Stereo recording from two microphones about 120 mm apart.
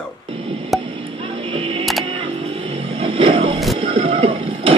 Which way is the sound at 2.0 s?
50° right (ahead or behind).